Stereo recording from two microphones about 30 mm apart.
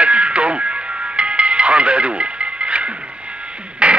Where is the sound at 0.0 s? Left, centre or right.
Right.